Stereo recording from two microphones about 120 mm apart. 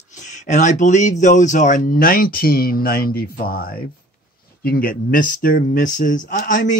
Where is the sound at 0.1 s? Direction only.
85° left.